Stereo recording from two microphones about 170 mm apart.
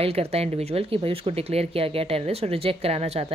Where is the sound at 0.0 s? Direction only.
35° right (ahead or behind).